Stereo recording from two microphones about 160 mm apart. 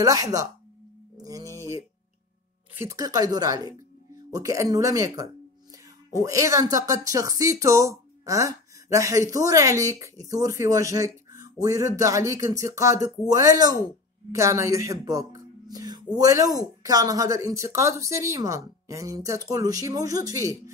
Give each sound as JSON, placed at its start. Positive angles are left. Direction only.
{"t": 0.0, "sound": "speech", "side_deg": -20}
{"t": 1.1, "sound": "music", "side_deg": -20}
{"t": 2.7, "sound": "speech", "side_deg": -20}